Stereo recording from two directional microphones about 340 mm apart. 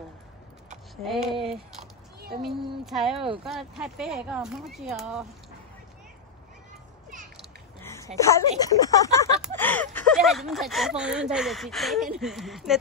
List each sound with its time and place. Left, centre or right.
1.0 s speech: centre
7.8 s a sound: centre
8.5 s speech: centre